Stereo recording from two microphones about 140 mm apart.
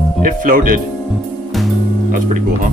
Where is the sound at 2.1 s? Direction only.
70° right (ahead or behind).